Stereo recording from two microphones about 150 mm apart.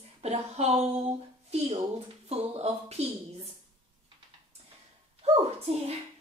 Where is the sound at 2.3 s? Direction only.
45° right (ahead or behind).